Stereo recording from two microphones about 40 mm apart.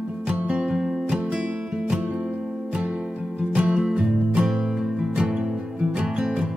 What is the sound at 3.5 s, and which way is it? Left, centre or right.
Music, right.